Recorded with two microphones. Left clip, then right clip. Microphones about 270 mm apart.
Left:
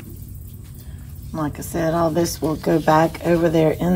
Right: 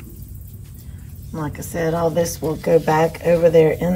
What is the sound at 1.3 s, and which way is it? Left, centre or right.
Speech, left.